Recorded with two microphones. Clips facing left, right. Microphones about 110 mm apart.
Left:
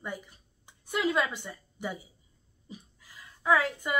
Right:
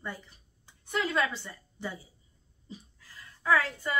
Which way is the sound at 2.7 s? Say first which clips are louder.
Even; 15° left (ahead or behind).